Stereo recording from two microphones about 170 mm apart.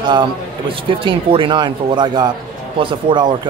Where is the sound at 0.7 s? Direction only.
30° right (ahead or behind).